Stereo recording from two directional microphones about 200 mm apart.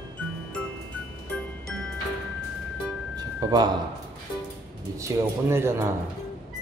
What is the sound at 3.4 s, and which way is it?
Speech, 20° right (ahead or behind).